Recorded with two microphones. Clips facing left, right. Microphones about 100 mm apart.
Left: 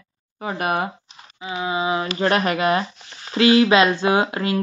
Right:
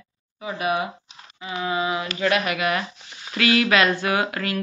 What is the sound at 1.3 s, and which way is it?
Speech, 20° left (ahead or behind).